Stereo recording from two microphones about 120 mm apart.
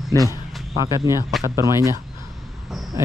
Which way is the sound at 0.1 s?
20° left (ahead or behind).